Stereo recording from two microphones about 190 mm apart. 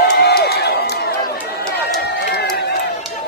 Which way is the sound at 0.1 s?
60° left (ahead or behind).